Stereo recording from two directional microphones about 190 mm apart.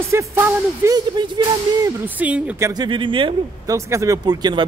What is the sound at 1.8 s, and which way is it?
Speech, 10° right (ahead or behind).